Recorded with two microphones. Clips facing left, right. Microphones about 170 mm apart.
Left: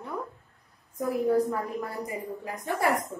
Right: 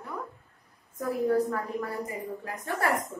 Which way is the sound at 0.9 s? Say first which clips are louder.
Left 1 dB; 15° left (ahead or behind).